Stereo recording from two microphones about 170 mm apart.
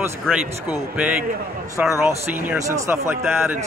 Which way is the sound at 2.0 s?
10° right (ahead or behind).